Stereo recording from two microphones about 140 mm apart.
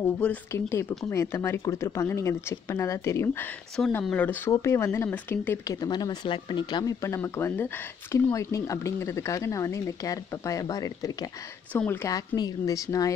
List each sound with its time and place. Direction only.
0.0 s speech: 15° left (ahead or behind)
3.7 s speech: 5° left (ahead or behind)
5.8 s speech: 30° left (ahead or behind)
11.7 s speech: 10° left (ahead or behind)
12.4 s speech: 25° left (ahead or behind)